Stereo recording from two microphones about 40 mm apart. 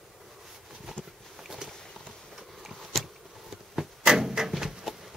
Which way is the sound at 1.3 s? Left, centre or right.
Centre.